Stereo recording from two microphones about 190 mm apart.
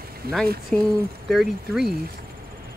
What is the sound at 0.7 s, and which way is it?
Speech, 5° left (ahead or behind).